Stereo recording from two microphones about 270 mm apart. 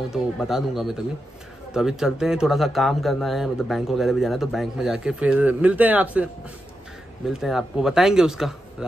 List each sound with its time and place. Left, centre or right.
0.1 s speech: centre
7.2 s speech: centre